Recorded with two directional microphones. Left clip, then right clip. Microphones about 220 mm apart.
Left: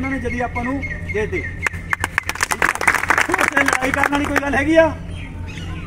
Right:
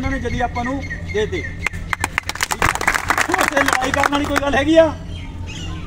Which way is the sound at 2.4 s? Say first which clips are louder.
Left 1 dB; 10° right (ahead or behind).